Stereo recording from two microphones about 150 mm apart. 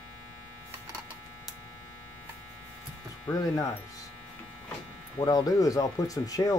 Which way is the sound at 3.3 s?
25° left (ahead or behind).